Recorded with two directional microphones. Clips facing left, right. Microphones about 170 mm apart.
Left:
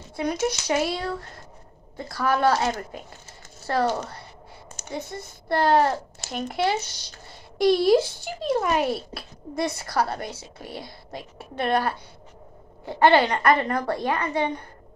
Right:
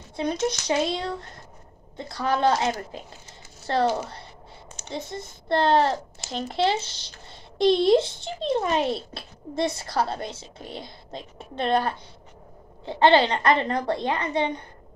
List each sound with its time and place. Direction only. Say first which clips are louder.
0.1 s speech: even; 25° right (ahead or behind)